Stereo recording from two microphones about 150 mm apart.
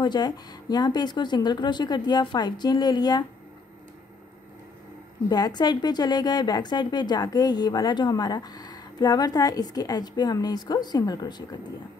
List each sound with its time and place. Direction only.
0.0 s a woman's voice: 30° left (ahead or behind)
5.3 s a woman's voice: 30° left (ahead or behind)